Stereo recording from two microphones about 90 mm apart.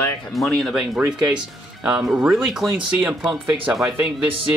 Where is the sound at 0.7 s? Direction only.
10° right (ahead or behind).